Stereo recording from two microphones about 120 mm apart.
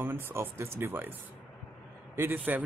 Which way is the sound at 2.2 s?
15° right (ahead or behind).